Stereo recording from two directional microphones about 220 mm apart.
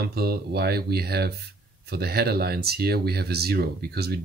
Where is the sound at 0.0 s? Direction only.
45° right (ahead or behind).